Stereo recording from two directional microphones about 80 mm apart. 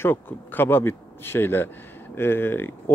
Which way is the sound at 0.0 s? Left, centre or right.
Left.